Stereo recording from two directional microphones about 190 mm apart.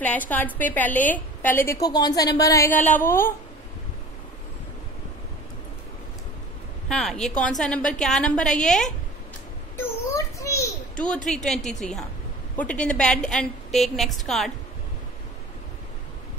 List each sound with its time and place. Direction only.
0.0 s a woman's voice: 10° left (ahead or behind)
6.9 s a woman's voice: centre (ahead or behind)
9.8 s a sound: 15° left (ahead or behind)
11.2 s a woman's voice: centre (ahead or behind)